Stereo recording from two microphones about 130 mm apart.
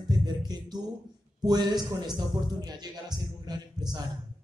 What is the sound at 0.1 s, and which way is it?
Music, 30° right (ahead or behind).